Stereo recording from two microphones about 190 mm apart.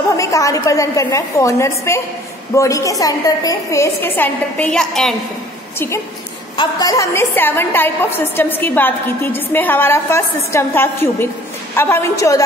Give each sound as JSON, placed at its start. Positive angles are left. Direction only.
{"t": 0.2, "sound": "a woman's voice", "side_deg": 15}
{"t": 6.5, "sound": "a woman's voice", "side_deg": 20}